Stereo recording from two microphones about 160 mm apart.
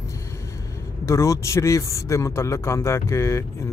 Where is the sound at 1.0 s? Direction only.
20° left (ahead or behind).